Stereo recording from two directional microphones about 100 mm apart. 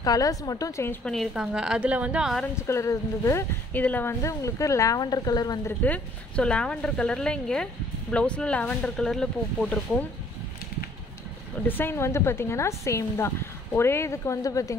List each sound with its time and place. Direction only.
0.0 s a woman's voice: 35° left (ahead or behind)
1.0 s a woman's voice: centre (ahead or behind)
2.5 s a woman's voice: 30° left (ahead or behind)
3.7 s a woman's voice: 15° left (ahead or behind); by 5.6 s 40° left (ahead or behind)
5.7 s a woman's voice: 10° left (ahead or behind)
11.6 s a woman's voice: 20° left (ahead or behind)